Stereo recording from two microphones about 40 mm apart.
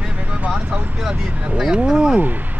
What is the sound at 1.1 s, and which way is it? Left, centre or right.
Speech, centre.